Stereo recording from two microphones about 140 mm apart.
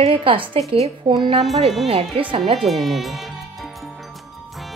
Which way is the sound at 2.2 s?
40° right (ahead or behind).